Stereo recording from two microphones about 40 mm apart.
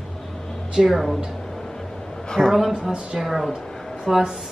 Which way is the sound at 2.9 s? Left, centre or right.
Right.